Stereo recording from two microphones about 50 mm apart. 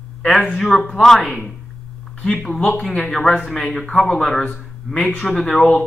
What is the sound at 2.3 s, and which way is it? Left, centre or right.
Speech, centre.